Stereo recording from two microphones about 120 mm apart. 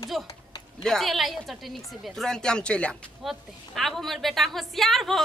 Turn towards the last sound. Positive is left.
turn(degrees=0)  # may be behind; listen again after turning